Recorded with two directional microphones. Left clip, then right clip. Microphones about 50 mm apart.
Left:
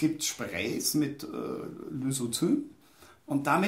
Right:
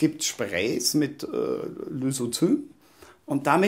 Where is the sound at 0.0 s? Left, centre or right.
Right.